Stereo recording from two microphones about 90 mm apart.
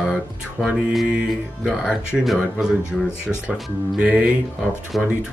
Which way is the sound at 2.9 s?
5° left (ahead or behind).